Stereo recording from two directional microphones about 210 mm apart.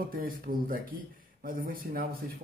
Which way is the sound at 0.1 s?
40° right (ahead or behind).